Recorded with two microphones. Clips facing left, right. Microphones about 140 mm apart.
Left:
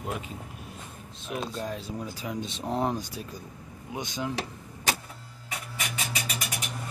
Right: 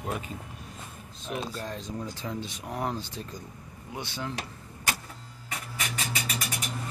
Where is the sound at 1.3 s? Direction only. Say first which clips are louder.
Left 1 dB; 5° left (ahead or behind).